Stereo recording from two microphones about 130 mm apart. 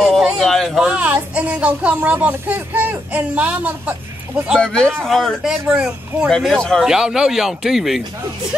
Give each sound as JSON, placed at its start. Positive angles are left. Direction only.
{"t": 0.1, "sound": "a sound", "side_deg": 0}
{"t": 0.8, "sound": "speech", "side_deg": -10}
{"t": 4.6, "sound": "speech", "side_deg": 5}